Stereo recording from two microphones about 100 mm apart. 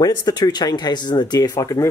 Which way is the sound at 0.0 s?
45° left (ahead or behind).